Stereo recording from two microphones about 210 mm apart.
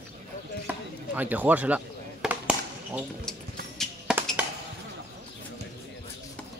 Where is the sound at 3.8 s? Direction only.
Centre (ahead or behind).